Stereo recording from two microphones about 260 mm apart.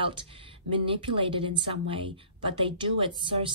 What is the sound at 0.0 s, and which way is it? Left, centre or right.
A woman's voice, centre.